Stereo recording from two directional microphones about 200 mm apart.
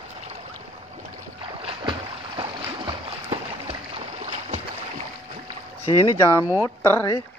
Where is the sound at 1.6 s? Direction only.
25° right (ahead or behind).